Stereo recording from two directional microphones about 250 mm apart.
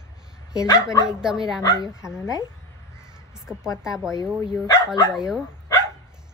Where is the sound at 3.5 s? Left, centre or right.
Centre.